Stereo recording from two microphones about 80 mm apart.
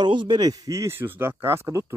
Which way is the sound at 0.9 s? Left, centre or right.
Right.